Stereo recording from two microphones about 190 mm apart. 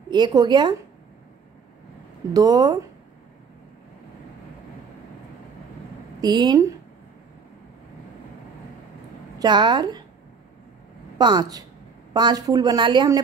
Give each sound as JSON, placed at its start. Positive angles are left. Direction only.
{"t": 0.1, "sound": "a woman's voice", "side_deg": -20}
{"t": 2.3, "sound": "a woman's voice", "side_deg": -20}
{"t": 6.2, "sound": "a woman's voice", "side_deg": -20}
{"t": 9.4, "sound": "a woman's voice", "side_deg": -25}
{"t": 11.1, "sound": "a woman's voice", "side_deg": -20}